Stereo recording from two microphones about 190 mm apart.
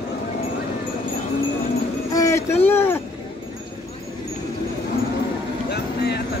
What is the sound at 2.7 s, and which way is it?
Speech, 10° left (ahead or behind).